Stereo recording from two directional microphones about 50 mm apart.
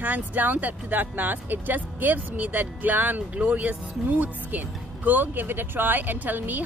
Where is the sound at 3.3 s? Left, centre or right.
Right.